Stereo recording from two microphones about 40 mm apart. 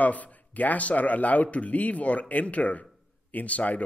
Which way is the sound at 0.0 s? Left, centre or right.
Left.